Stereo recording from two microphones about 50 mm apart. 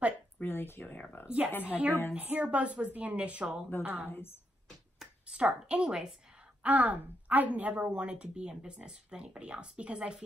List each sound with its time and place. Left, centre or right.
0.4 s speech: left
1.2 s a woman's voice: right
1.5 s speech: left
2.1 s a woman's voice: right
3.8 s a woman's voice: right
4.1 s speech: left
5.3 s a woman's voice: right
6.6 s a woman's voice: right